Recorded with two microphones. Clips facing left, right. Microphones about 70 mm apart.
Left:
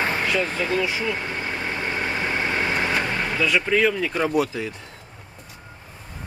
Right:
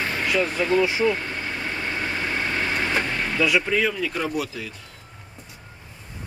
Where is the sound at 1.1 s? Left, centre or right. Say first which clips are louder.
Left 1 dB; left.